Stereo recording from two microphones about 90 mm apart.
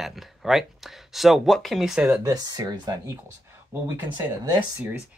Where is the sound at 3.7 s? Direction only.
20° right (ahead or behind).